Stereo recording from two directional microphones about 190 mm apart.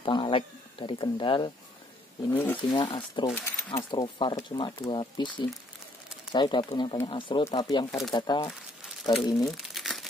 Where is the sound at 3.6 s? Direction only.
25° left (ahead or behind).